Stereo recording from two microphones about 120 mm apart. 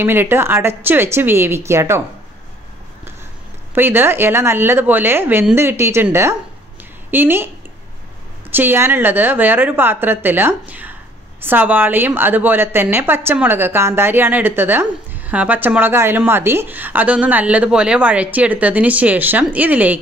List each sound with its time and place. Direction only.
0.0 s speech: 20° right (ahead or behind)
3.7 s speech: 15° right (ahead or behind)
7.1 s a woman's voice: 15° right (ahead or behind)